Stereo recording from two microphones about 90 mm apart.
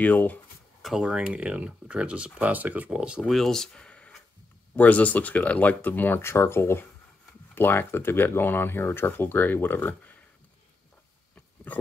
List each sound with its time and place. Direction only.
0.0 s speech: 20° left (ahead or behind)
0.8 s speech: 5° right (ahead or behind)
3.3 s speech: 5° left (ahead or behind); by 10.1 s 20° left (ahead or behind)
11.3 s a sound: 15° left (ahead or behind)